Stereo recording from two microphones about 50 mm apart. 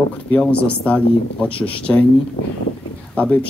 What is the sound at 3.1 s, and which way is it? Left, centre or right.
Speech, left.